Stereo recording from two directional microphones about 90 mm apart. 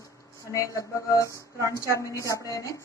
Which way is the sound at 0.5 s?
35° left (ahead or behind).